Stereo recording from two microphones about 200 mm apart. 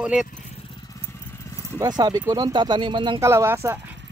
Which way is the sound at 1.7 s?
20° right (ahead or behind).